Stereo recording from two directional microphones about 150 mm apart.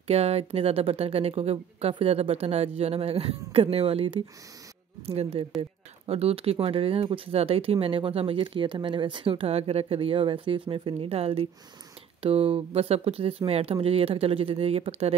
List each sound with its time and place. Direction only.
0.0 s speech: 45° right (ahead or behind)